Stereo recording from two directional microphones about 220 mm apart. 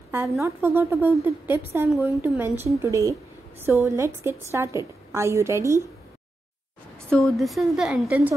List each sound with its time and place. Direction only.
0.4 s a woman's voice: 10° right (ahead or behind)
7.1 s a woman's voice: centre (ahead or behind)